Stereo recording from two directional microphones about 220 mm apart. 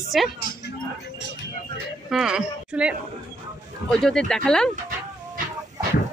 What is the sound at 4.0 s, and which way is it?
Speech, 5° left (ahead or behind).